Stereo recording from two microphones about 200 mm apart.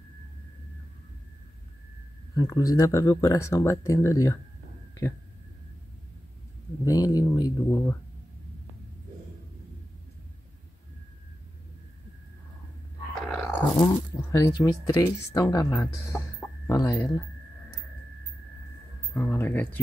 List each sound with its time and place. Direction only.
2.3 s speech: 20° left (ahead or behind)
6.8 s speech: 20° left (ahead or behind)
13.2 s a sound: 5° left (ahead or behind)
13.7 s speech: 15° left (ahead or behind)
19.1 s speech: 10° left (ahead or behind)